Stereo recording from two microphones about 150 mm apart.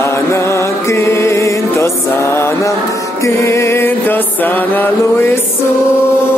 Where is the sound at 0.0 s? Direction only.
15° left (ahead or behind).